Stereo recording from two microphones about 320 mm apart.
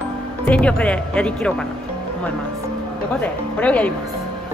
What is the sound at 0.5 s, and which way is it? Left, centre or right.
Speech, centre.